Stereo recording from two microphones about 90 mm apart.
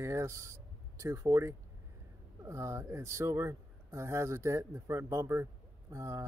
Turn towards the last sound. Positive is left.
turn(degrees=-35)  # may be behind; listen again after turning